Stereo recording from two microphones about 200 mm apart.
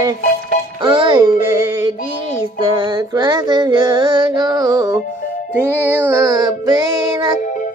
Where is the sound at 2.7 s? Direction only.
20° right (ahead or behind).